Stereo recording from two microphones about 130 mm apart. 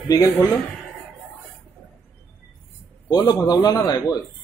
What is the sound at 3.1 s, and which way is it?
A man's voice, 30° left (ahead or behind).